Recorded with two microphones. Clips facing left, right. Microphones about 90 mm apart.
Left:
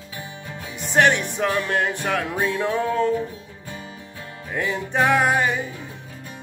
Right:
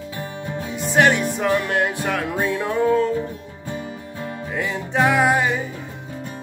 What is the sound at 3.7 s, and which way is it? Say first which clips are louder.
Music: right 7 dB; 25° right (ahead or behind).